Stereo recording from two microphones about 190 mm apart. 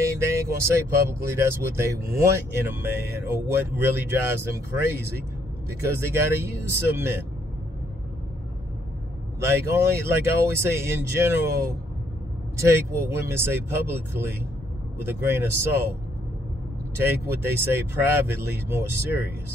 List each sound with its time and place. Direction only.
0.0 s vehicle: 15° right (ahead or behind)
1.2 s speech: 15° right (ahead or behind)
5.9 s speech: 15° right (ahead or behind)
9.5 s speech: 15° right (ahead or behind)
17.0 s speech: 10° right (ahead or behind)